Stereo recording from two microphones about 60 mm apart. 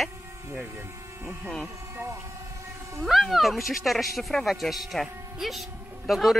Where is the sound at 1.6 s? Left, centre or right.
Right.